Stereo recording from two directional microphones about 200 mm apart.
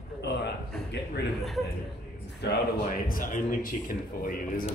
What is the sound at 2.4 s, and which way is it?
Speech, 55° left (ahead or behind).